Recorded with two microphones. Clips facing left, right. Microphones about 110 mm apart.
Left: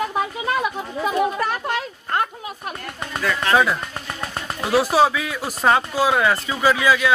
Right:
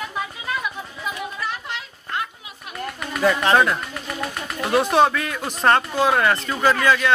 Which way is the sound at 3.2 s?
30° right (ahead or behind).